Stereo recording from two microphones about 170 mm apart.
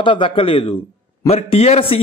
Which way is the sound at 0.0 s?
30° left (ahead or behind).